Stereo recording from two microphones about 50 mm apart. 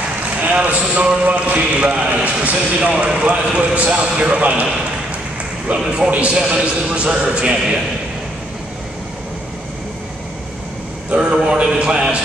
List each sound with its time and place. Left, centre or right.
0.4 s a man's voice: right
5.7 s a man's voice: centre
11.1 s a man's voice: centre